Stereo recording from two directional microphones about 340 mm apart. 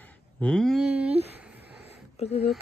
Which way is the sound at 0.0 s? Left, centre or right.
Centre.